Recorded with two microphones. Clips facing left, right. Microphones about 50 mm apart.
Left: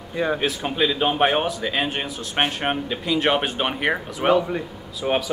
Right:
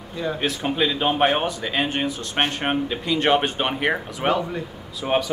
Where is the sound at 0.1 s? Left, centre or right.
Left.